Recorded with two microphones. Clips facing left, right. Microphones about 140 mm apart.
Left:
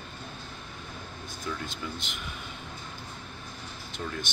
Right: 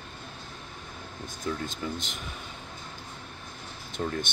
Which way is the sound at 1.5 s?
45° right (ahead or behind).